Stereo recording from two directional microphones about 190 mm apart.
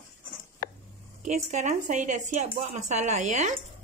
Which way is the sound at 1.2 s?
40° right (ahead or behind).